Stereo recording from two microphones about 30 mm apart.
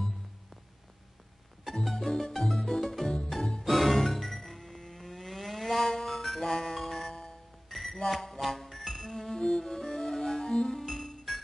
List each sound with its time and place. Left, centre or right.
1.9 s music: centre
3.6 s music: centre
7.7 s a sound: centre
8.1 s music: centre
10.9 s music: centre